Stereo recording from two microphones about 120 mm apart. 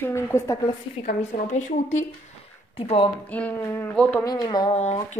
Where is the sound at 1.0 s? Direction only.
85° left.